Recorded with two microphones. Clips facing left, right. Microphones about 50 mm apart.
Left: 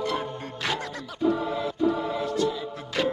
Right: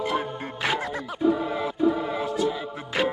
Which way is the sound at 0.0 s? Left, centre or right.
Centre.